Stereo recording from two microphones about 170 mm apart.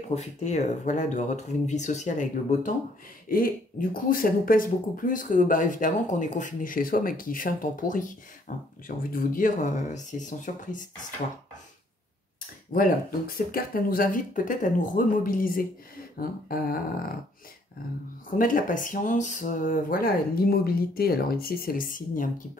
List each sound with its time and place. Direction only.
0.1 s speech: 40° left (ahead or behind)
13.5 s speech: 60° left (ahead or behind)
18.4 s speech: 50° left (ahead or behind)